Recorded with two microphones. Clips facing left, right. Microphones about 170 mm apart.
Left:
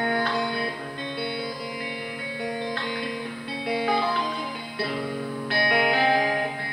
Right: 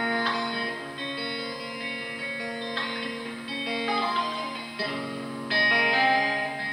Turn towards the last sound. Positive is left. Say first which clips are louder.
# left 3 dB
turn(degrees=55)  # may be behind; listen again after turning